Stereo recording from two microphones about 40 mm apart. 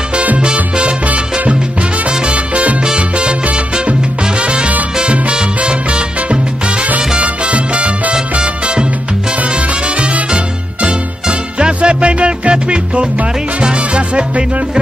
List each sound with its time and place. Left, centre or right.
0.1 s salsa music: right
1.5 s music: right
2.3 s salsa music: right
3.0 s music: right
7.2 s salsa music: right
9.3 s music: right